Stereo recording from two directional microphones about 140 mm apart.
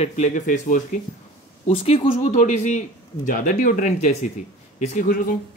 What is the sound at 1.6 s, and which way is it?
Speech, 45° left (ahead or behind).